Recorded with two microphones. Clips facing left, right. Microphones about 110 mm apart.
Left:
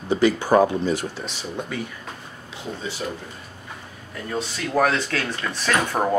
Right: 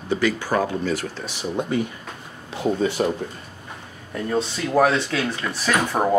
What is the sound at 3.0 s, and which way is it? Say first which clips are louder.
Speech: right 6 dB; 70° right (ahead or behind).